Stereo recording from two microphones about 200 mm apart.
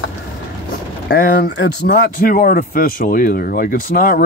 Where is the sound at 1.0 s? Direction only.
60° left (ahead or behind).